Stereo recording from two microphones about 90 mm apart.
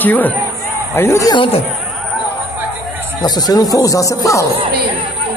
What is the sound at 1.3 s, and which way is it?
Speech, 80° left.